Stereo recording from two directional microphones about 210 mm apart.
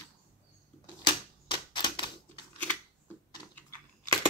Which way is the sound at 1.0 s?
20° left (ahead or behind).